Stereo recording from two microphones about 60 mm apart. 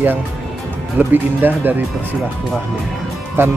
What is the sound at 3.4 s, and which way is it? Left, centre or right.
Speech, right.